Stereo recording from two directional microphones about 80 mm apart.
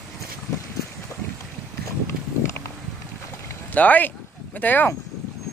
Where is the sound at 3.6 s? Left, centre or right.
Left.